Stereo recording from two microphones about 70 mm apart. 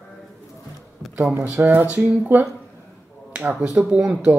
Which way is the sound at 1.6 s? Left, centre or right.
Right.